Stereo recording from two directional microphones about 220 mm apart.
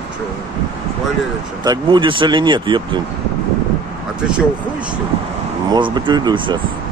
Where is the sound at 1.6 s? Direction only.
20° right (ahead or behind).